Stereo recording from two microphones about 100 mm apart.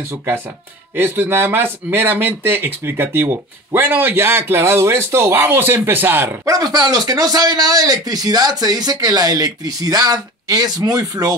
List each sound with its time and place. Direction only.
0.9 s speech: 20° right (ahead or behind)
6.4 s speech: 40° right (ahead or behind)